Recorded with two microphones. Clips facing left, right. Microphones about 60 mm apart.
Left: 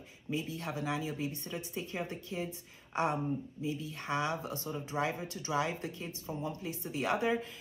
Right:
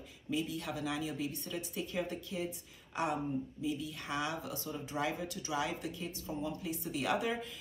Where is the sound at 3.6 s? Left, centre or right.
Left.